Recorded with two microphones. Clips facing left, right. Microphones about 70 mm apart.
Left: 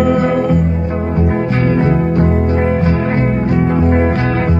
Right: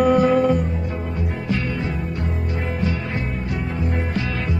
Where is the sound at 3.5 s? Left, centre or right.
Left.